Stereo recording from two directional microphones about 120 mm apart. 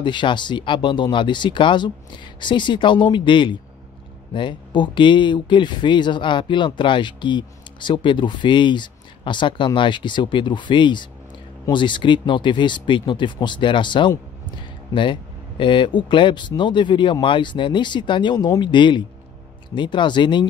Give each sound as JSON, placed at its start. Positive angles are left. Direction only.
{"t": 0.0, "sound": "speech", "side_deg": 40}
{"t": 14.9, "sound": "speech", "side_deg": 30}
{"t": 15.6, "sound": "speech", "side_deg": 45}